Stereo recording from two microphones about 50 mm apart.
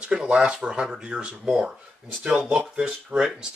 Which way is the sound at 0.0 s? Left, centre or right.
Centre.